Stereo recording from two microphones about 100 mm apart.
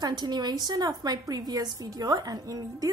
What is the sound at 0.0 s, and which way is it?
A woman's voice, 45° right (ahead or behind).